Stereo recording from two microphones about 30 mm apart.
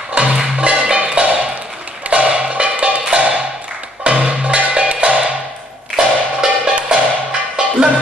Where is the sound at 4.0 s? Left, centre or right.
Right.